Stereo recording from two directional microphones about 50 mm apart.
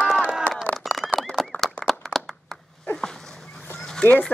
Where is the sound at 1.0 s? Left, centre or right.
Centre.